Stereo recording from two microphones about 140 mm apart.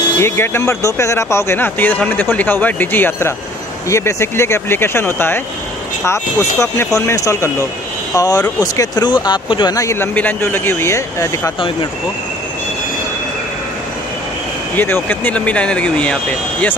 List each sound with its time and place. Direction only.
0.2 s speech: 20° left (ahead or behind)
14.8 s speech: 15° left (ahead or behind)